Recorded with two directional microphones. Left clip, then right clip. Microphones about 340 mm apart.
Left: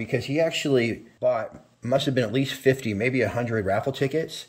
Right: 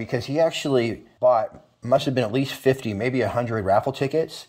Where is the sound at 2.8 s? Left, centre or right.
Right.